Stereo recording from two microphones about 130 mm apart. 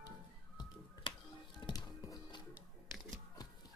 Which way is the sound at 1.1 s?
40° left (ahead or behind).